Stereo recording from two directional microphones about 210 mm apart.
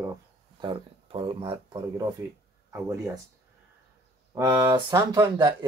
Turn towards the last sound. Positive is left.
turn(degrees=-20)  # may be behind; listen again after turning